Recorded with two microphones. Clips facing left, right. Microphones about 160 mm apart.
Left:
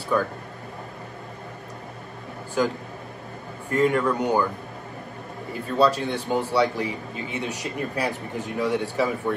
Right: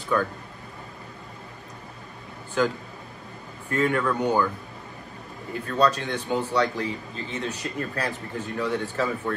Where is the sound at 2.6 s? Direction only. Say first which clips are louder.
Even; 5° left (ahead or behind).